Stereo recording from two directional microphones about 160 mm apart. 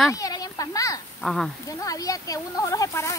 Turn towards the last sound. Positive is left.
turn(degrees=20)  # may be behind; listen again after turning